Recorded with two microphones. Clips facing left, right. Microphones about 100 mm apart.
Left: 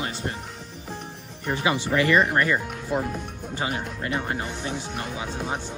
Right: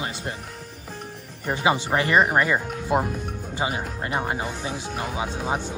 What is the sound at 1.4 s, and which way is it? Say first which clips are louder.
Speech: right 2 dB; 25° right (ahead or behind).